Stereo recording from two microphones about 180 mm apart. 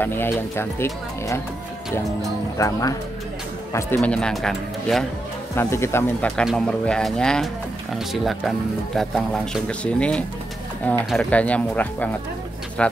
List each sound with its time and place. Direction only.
0.0 s speech: 10° left (ahead or behind)
2.5 s speech: 20° left (ahead or behind)
3.7 s a man's voice: 5° left (ahead or behind)
5.6 s a man's voice: 15° left (ahead or behind)